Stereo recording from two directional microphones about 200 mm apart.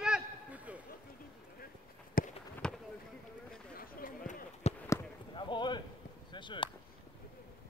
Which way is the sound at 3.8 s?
40° left (ahead or behind).